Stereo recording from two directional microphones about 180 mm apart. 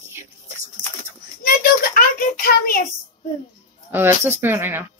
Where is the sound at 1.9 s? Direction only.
55° left (ahead or behind).